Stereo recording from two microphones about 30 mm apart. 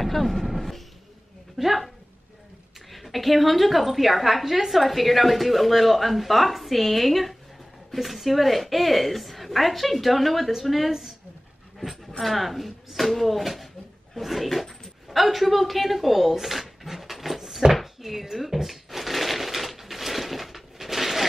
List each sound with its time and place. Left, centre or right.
0.0 s a sound: centre
1.6 s a woman's voice: centre
2.9 s a woman's voice: centre
10.9 s speech: centre
12.2 s a woman's voice: centre
17.6 s cupboard open or close: right
18.0 s a sound: centre